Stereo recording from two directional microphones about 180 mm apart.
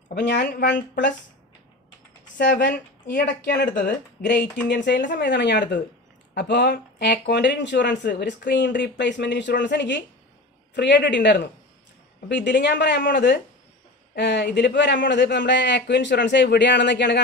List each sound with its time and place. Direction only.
0.1 s speech: 70° left (ahead or behind)
2.3 s speech: 70° left (ahead or behind)